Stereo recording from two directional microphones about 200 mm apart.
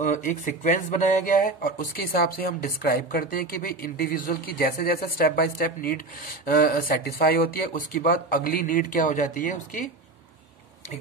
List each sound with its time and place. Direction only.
0.0 s speech: 40° left (ahead or behind)